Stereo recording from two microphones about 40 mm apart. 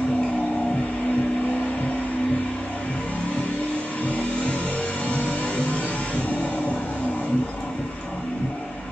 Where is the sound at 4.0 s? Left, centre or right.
Left.